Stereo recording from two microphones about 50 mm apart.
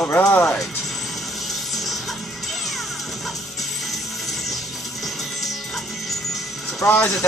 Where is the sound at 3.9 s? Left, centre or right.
Centre.